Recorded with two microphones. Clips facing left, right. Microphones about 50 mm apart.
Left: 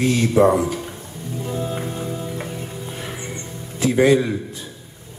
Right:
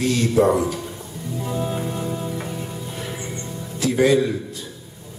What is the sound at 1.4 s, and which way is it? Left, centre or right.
Music, right.